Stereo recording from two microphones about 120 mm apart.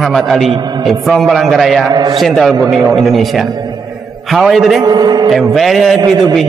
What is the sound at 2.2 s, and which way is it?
A man's voice, centre (ahead or behind).